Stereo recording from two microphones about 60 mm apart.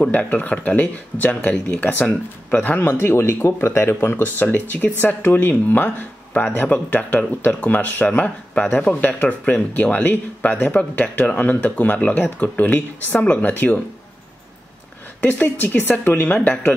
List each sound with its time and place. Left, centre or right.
0.1 s speech: left
15.1 s speech: left